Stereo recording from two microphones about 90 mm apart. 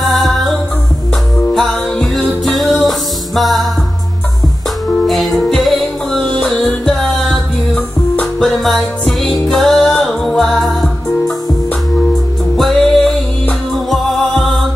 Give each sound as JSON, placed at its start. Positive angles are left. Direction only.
{"t": 0.0, "sound": "music", "side_deg": 0}
{"t": 5.0, "sound": "music", "side_deg": 0}
{"t": 12.5, "sound": "music", "side_deg": 5}